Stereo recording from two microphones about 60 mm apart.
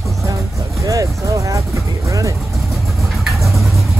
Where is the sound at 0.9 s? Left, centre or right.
Right.